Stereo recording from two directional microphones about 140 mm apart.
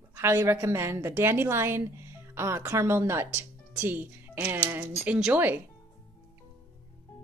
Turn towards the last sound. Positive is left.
turn(degrees=-15)  # may be behind; listen again after turning